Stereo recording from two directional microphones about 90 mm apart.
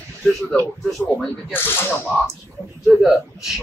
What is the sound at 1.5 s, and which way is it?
Speech, 25° left (ahead or behind).